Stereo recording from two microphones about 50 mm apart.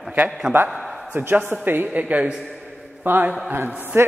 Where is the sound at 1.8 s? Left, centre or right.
Right.